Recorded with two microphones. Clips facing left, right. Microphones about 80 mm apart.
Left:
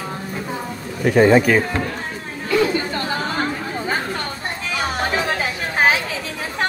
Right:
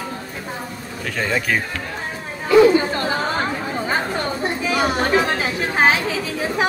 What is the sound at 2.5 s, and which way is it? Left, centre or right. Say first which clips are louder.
Chatter: right 6 dB; centre.